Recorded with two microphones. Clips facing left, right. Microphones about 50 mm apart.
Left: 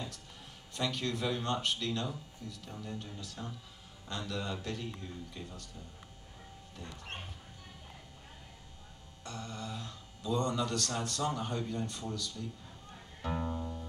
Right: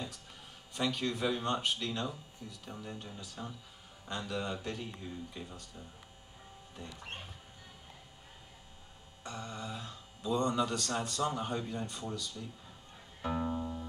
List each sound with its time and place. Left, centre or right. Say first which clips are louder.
0.7 s speech: right 1 dB; centre
9.2 s speech: right 1 dB; centre
13.3 s music: right 2 dB; centre